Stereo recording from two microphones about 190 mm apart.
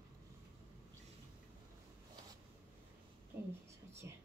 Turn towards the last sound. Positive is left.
turn(degrees=-15)  # may be behind; listen again after turning